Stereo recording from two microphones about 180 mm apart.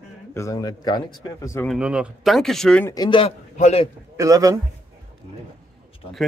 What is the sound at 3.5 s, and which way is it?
Speech, 40° left (ahead or behind).